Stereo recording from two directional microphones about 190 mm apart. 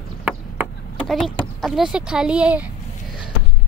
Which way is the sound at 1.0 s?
Centre (ahead or behind).